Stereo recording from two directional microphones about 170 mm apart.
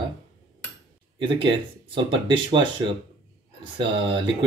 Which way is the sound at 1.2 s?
30° right (ahead or behind).